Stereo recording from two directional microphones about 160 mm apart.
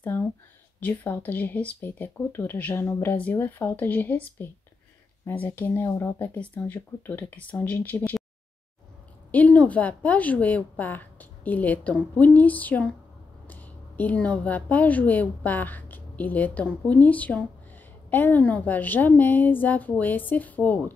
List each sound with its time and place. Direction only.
0.0 s a sound: 10° left (ahead or behind)
0.7 s speech: 10° left (ahead or behind)
9.3 s a woman's voice: 10° left (ahead or behind)